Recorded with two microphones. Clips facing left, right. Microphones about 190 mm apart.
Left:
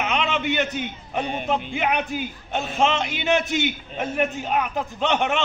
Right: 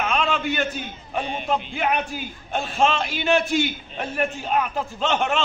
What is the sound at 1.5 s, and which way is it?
A man's voice, 20° left (ahead or behind).